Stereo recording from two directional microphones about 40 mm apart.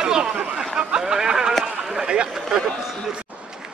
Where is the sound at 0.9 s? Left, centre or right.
Centre.